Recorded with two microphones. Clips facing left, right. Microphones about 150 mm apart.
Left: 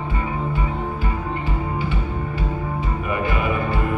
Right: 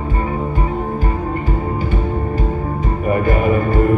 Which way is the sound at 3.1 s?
45° right (ahead or behind).